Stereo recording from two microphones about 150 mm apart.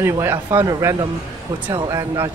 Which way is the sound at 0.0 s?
15° right (ahead or behind).